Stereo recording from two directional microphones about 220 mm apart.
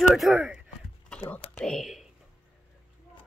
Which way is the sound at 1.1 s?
5° left (ahead or behind).